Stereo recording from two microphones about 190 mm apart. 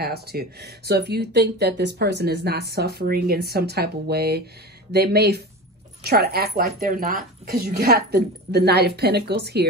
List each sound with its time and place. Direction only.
0.0 s speech: 55° right (ahead or behind)